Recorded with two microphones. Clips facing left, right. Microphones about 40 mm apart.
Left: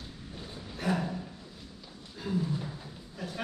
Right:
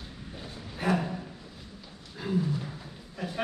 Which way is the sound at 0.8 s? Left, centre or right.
Centre.